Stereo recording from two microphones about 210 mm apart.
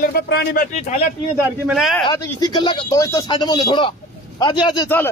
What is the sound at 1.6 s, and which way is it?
Speech, centre (ahead or behind).